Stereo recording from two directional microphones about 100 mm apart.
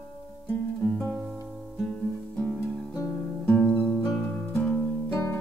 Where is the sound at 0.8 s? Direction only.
20° left (ahead or behind).